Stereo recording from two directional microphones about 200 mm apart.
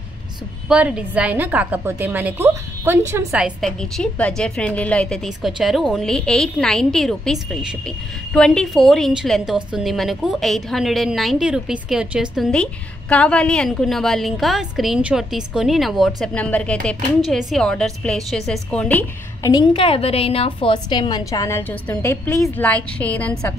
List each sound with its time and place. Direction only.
0.7 s a woman's voice: 5° right (ahead or behind)
19.5 s a woman's voice: 25° left (ahead or behind); by 23.5 s 5° left (ahead or behind)